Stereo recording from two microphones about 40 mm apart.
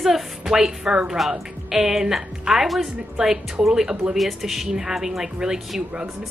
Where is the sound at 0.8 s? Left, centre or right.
Right.